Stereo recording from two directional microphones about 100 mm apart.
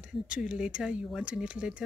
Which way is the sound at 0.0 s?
5° right (ahead or behind).